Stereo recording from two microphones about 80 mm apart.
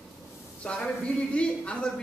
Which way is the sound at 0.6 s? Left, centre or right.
Centre.